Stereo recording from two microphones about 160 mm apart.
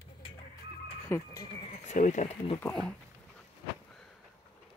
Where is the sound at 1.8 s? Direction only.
50° left (ahead or behind).